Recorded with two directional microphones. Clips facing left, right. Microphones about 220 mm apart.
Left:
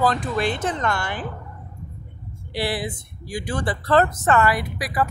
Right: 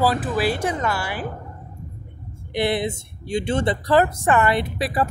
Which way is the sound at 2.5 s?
20° right (ahead or behind).